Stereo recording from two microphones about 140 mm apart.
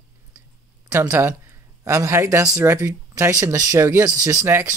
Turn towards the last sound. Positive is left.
turn(degrees=-20)  # may be behind; listen again after turning